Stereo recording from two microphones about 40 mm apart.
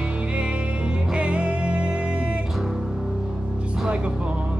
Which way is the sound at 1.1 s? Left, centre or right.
Right.